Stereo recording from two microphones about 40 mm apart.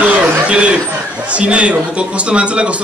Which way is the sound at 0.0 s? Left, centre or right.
Right.